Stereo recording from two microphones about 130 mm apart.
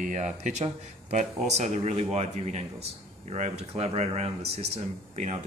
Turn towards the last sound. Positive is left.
turn(degrees=-55)  # may be behind; listen again after turning